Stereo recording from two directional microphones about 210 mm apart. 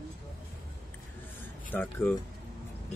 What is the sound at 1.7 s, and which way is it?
Speech, 10° left (ahead or behind).